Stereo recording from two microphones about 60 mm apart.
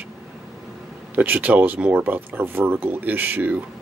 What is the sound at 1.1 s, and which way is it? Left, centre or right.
Speech, right.